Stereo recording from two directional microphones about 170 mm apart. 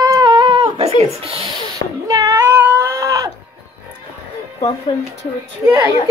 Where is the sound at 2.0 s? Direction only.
20° right (ahead or behind).